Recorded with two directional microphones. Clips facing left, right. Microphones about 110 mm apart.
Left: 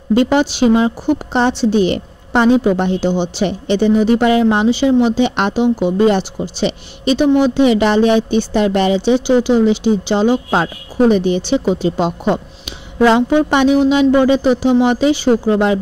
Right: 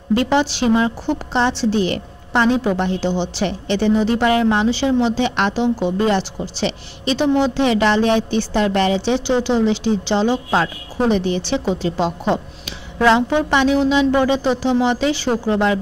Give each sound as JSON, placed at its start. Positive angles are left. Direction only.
{"t": 0.1, "sound": "a woman's voice", "side_deg": 20}